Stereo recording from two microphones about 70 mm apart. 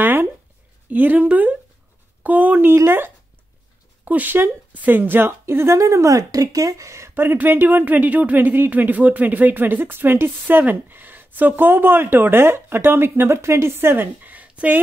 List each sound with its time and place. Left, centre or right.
0.0 s a sound: right
0.8 s speech: right
2.7 s a woman's voice: right
7.2 s speech: right